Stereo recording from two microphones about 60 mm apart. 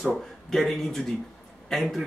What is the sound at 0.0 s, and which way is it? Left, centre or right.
Speech, centre.